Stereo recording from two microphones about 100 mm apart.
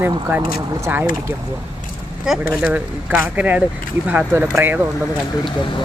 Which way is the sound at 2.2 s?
10° right (ahead or behind).